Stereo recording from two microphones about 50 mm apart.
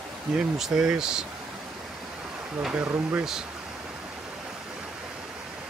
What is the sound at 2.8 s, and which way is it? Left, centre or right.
Speech, right.